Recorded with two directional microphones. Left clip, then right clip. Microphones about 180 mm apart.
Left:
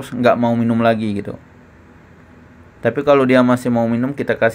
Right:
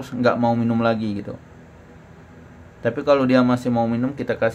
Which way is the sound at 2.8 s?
25° left (ahead or behind).